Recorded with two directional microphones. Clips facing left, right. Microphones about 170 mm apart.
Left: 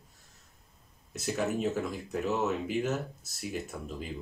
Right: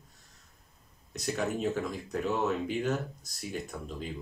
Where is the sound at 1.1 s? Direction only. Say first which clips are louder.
Left 1 dB; 5° left (ahead or behind).